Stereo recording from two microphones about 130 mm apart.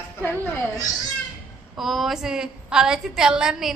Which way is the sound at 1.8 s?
Centre (ahead or behind).